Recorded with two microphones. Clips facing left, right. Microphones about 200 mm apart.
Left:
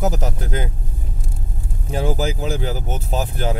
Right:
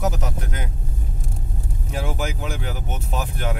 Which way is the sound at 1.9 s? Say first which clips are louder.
Left 6 dB; 35° left (ahead or behind).